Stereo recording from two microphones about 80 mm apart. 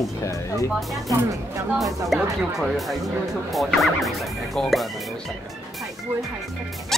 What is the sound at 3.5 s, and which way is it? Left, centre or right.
Speech, centre.